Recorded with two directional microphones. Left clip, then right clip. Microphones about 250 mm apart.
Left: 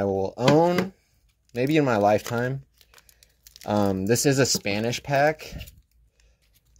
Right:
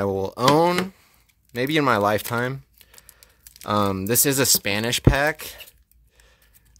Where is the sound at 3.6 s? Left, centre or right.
Centre.